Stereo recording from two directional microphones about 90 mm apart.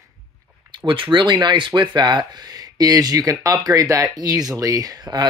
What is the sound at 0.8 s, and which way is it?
Speech, 65° right (ahead or behind).